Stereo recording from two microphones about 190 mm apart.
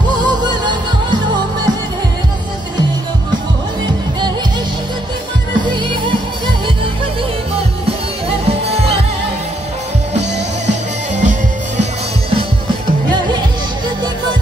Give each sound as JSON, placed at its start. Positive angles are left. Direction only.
{"t": 8.5, "sound": "music", "side_deg": -30}
{"t": 11.1, "sound": "music", "side_deg": -40}